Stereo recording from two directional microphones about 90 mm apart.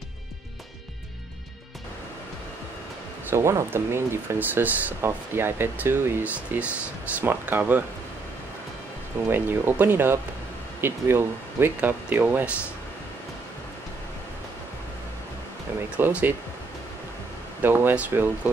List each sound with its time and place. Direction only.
3.3 s speech: 30° right (ahead or behind)
9.3 s speech: 25° right (ahead or behind)
16.1 s speech: 15° right (ahead or behind)
17.6 s speech: 25° right (ahead or behind)